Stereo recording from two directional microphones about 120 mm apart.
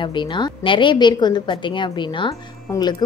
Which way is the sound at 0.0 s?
40° left (ahead or behind).